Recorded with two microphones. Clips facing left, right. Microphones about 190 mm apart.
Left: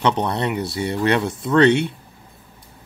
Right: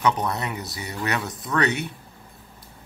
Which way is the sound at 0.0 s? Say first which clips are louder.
Left 4 dB; 30° left (ahead or behind).